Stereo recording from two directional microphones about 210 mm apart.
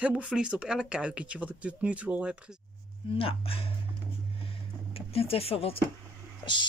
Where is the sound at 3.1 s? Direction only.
25° left (ahead or behind).